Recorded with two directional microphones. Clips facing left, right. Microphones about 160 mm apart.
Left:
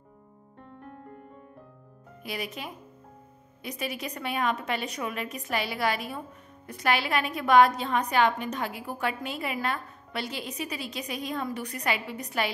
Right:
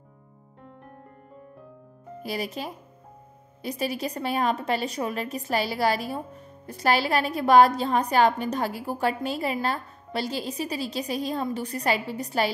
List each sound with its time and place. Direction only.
2.2 s a woman's voice: 35° right (ahead or behind)